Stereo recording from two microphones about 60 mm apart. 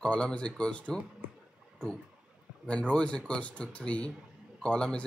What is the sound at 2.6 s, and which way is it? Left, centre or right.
Speech, centre.